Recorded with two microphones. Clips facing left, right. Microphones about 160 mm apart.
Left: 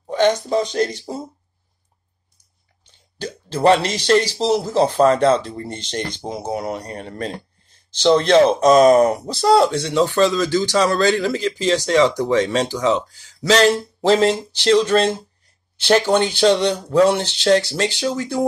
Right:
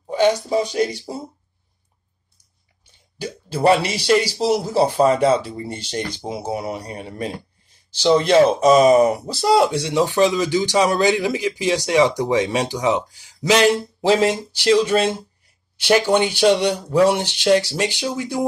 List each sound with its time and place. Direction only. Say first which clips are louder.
0.1 s speech: even; 10° right (ahead or behind)
2.8 s speech: even; 10° right (ahead or behind)